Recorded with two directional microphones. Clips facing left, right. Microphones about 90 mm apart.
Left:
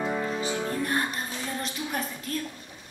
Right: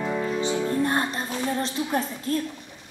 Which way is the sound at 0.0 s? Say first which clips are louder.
Right 2 dB; 5° left (ahead or behind).